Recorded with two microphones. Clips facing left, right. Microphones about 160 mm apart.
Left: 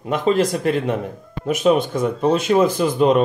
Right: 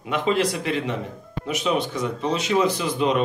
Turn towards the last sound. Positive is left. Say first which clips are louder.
# left 6 dB
turn(degrees=50)  # may be behind; listen again after turning